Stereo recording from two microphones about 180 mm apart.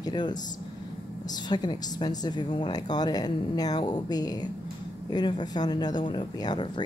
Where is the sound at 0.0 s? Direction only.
25° left (ahead or behind).